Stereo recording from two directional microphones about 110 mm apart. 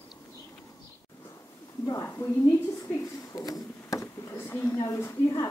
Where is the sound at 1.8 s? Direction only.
30° left (ahead or behind).